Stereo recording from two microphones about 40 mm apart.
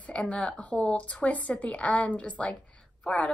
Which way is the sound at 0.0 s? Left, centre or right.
Left.